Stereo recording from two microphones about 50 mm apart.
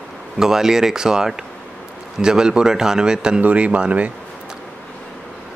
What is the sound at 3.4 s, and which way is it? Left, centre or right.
Speech, right.